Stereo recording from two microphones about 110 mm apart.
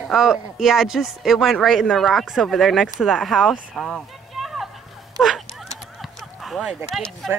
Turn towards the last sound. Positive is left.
turn(degrees=0)  # may be behind; listen again after turning